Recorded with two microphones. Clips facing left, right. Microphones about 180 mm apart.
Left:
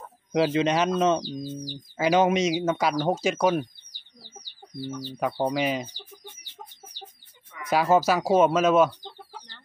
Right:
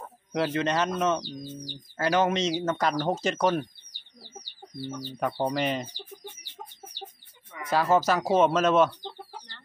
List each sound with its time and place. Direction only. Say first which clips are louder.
0.3 s speech: left 4 dB; 15° left (ahead or behind)
5.2 s speech: left 2 dB; 5° left (ahead or behind)
7.7 s speech: left 2 dB; 10° left (ahead or behind)